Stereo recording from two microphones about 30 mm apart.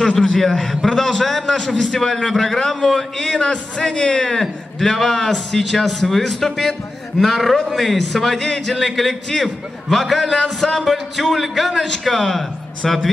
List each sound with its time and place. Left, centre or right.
0.0 s a man's voice: centre
3.3 s a man's voice: left; by 13.1 s centre